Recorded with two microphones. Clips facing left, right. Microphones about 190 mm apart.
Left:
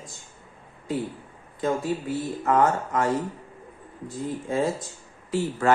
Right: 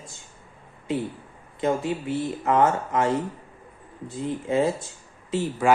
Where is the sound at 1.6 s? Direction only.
20° right (ahead or behind).